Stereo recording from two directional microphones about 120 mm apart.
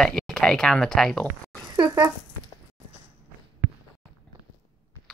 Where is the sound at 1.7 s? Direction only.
35° right (ahead or behind).